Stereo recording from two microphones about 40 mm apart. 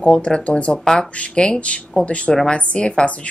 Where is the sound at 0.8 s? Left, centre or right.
Left.